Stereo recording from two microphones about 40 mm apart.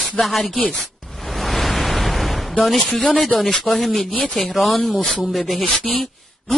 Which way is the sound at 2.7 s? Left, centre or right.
Centre.